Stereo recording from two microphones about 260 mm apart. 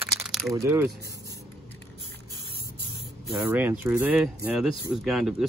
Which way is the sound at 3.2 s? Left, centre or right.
Centre.